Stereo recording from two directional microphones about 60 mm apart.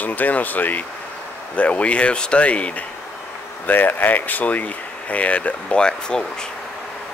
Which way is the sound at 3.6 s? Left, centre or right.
Left.